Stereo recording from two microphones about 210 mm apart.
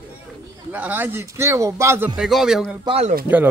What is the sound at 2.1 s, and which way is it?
Speech, centre (ahead or behind).